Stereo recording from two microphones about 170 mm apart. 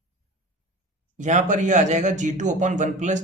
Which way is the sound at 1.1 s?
45° right (ahead or behind).